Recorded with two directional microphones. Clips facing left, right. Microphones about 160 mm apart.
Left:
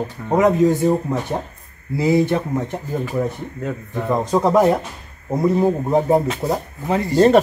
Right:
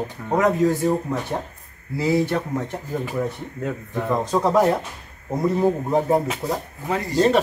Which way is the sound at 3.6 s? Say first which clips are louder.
Left 1 dB; centre (ahead or behind).